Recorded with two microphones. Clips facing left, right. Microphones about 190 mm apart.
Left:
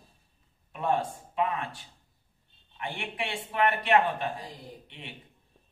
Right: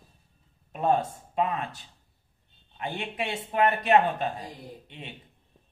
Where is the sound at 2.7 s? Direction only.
20° right (ahead or behind).